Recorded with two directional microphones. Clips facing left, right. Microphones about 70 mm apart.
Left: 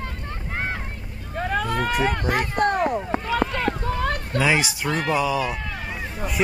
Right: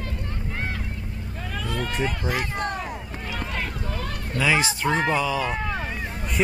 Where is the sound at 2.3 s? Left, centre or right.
Left.